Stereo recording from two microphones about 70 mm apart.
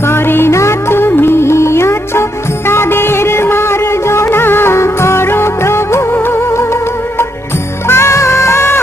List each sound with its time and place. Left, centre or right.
0.1 s music: left
7.9 s music: left